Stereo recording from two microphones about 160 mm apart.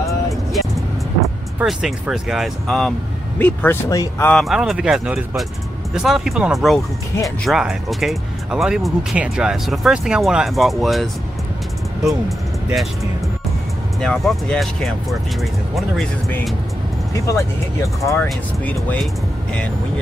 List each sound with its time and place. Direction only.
0.5 s vehicle: centre (ahead or behind)
1.6 s speech: 5° right (ahead or behind)
3.3 s speech: 15° left (ahead or behind)
4.3 s speech: centre (ahead or behind)
14.0 s speech: 5° left (ahead or behind)
17.1 s speech: 20° left (ahead or behind)